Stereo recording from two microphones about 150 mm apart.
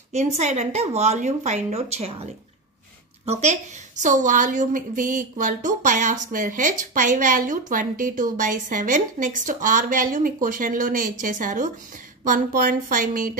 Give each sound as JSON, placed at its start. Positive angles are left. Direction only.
{"t": 0.1, "sound": "a woman's voice", "side_deg": -50}
{"t": 3.3, "sound": "a woman's voice", "side_deg": -50}